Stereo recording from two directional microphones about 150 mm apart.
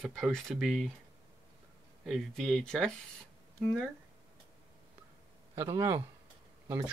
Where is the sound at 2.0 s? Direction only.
Centre (ahead or behind).